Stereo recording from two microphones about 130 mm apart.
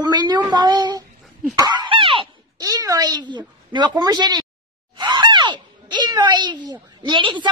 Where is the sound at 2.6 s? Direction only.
30° right (ahead or behind).